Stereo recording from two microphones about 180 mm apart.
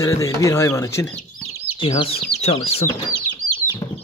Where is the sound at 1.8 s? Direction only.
35° left (ahead or behind).